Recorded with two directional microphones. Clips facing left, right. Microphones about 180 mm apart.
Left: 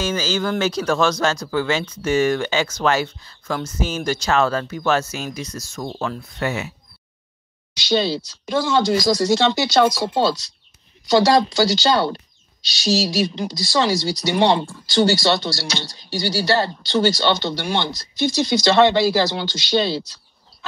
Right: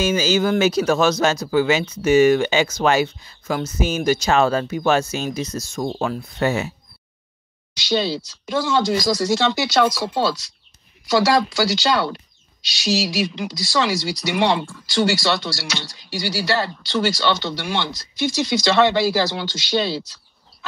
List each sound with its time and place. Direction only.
0.0 s speech: 10° right (ahead or behind)
5.9 s speech: 10° right (ahead or behind)
6.4 s speech: 30° right (ahead or behind)
7.9 s speech: 30° left (ahead or behind)
11.7 s speech: 30° left (ahead or behind)